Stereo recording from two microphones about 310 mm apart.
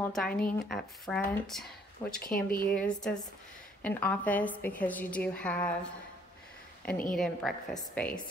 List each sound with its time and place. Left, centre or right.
0.0 s speech: centre
2.2 s speech: left
2.7 s speech: centre
7.2 s speech: centre